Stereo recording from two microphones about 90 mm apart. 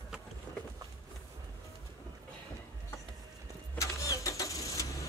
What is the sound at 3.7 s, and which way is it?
Vehicle, 35° left (ahead or behind).